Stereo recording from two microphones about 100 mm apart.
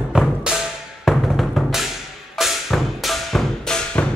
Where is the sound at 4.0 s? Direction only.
15° left (ahead or behind).